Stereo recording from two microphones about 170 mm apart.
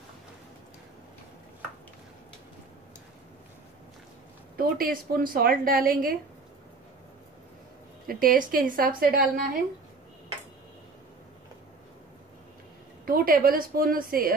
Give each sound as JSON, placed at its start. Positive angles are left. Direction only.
{"t": 4.6, "sound": "speech", "side_deg": -55}
{"t": 8.1, "sound": "speech", "side_deg": -55}
{"t": 13.0, "sound": "speech", "side_deg": -60}